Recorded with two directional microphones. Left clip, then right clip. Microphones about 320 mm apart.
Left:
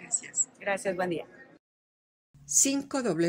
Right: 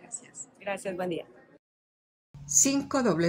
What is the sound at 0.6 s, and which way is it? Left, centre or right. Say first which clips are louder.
Speech: left 2 dB; centre.